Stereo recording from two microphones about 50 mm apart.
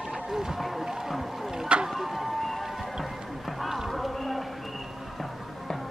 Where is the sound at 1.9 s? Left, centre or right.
Centre.